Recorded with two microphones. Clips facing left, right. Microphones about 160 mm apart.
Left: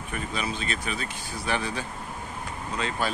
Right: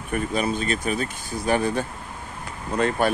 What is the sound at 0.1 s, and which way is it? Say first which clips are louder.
Speech: right 8 dB; 45° right (ahead or behind).